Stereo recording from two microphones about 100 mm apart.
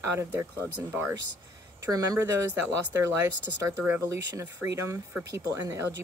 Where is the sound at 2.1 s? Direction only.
30° right (ahead or behind).